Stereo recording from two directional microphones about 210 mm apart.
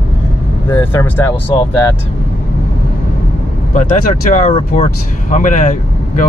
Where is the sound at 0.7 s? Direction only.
15° left (ahead or behind).